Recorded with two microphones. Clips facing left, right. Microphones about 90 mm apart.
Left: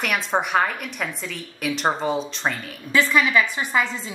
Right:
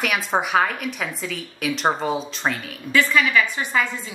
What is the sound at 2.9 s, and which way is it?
A woman's voice, 20° left (ahead or behind).